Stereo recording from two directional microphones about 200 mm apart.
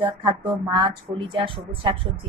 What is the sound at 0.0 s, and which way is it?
A woman's voice, 20° right (ahead or behind).